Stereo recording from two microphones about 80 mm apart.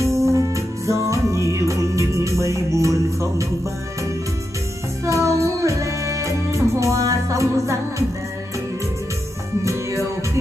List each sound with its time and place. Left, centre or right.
0.0 s music: right
5.0 s music: right
9.6 s music: right